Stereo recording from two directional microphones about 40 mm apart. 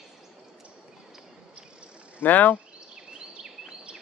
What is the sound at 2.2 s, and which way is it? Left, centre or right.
Speech, left.